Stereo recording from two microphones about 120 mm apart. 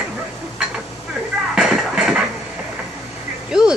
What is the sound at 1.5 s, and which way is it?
Music, 5° right (ahead or behind).